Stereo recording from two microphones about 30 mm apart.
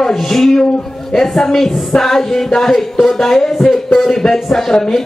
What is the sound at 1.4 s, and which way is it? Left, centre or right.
A man's voice, centre.